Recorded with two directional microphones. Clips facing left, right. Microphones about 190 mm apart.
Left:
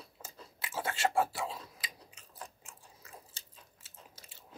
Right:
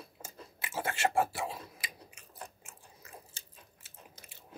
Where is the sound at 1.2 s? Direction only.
55° right (ahead or behind).